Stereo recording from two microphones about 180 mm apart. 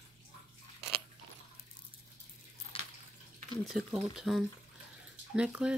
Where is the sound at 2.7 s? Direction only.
30° left (ahead or behind).